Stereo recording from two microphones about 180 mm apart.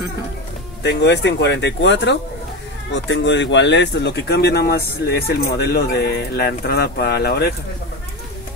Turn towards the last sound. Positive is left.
turn(degrees=60)  # may be behind; listen again after turning